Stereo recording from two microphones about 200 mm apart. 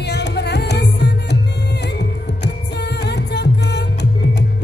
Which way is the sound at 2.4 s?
55° left (ahead or behind).